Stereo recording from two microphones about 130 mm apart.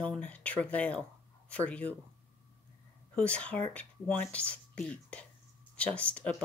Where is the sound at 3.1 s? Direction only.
10° left (ahead or behind).